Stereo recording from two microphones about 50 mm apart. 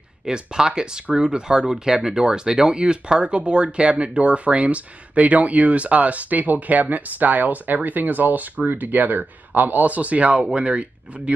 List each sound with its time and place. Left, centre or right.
0.2 s speech: centre